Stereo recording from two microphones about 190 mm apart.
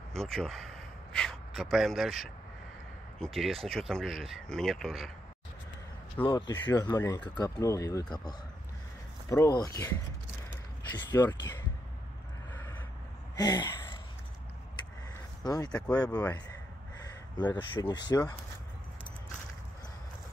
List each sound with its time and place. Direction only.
0.1 s speech: centre (ahead or behind)
6.2 s speech: 25° left (ahead or behind)
11.1 s speech: 10° left (ahead or behind)
12.5 s a sound: 10° left (ahead or behind)
13.4 s speech: 20° left (ahead or behind)
15.4 s speech: 20° left (ahead or behind)
17.4 s speech: 25° left (ahead or behind)